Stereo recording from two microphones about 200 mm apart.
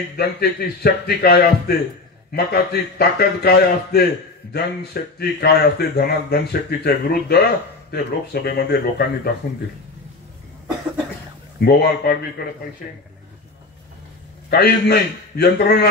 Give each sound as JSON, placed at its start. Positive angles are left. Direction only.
{"t": 0.2, "sound": "speech", "side_deg": 50}
{"t": 11.6, "sound": "speech", "side_deg": 55}
{"t": 14.5, "sound": "speech", "side_deg": 50}